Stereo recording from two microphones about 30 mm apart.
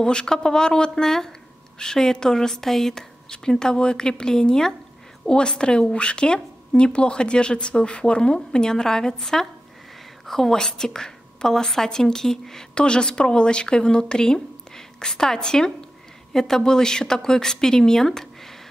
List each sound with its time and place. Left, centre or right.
0.0 s speech: left
1.0 s a woman's voice: centre
3.3 s a woman's voice: left
12.7 s a woman's voice: left; by 18.6 s centre